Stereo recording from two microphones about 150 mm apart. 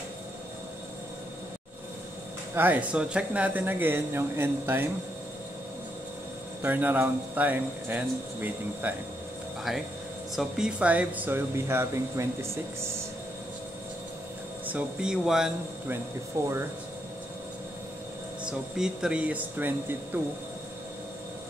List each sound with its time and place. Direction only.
2.5 s speech: 10° right (ahead or behind)
6.6 s speech: 15° right (ahead or behind)
14.7 s speech: 10° right (ahead or behind)
16.3 s speech: 20° right (ahead or behind)
18.5 s speech: 5° right (ahead or behind)